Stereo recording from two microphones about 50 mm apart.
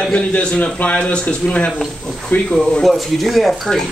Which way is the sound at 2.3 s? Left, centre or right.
Left.